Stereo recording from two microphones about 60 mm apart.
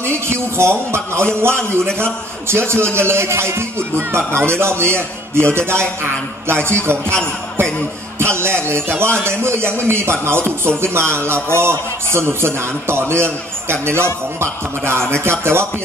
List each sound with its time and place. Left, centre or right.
0.0 s a man's voice: right
8.2 s a man's voice: right